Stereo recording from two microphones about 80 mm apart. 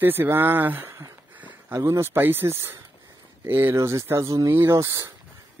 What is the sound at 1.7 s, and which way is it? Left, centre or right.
Speech, right.